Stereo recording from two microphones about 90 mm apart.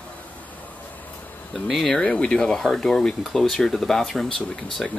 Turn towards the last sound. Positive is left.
turn(degrees=10)  # may be behind; listen again after turning